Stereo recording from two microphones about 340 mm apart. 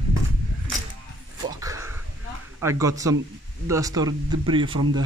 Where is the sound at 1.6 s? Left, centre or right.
Centre.